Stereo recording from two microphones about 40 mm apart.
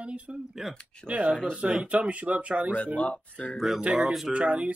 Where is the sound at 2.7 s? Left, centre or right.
Left.